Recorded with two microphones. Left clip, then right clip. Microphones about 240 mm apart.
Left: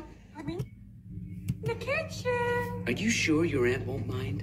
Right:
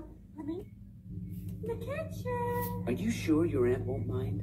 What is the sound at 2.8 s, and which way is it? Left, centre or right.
Speech, left.